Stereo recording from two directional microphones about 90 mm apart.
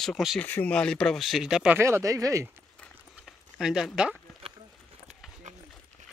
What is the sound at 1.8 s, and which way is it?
Speech, 30° right (ahead or behind).